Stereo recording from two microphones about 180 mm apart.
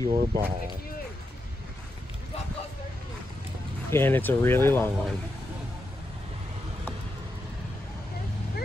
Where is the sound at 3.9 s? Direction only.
10° left (ahead or behind).